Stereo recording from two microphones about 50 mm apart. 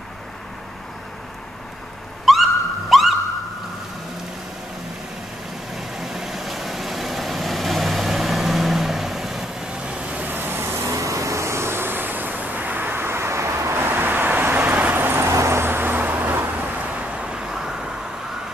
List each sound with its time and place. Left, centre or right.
2.3 s a sound: centre
5.8 s vehicle: centre
9.7 s vehicle: right
10.2 s vehicle: right
10.9 s vehicle: right
13.8 s vehicle: right
15.2 s vehicle: right; by 17.9 s centre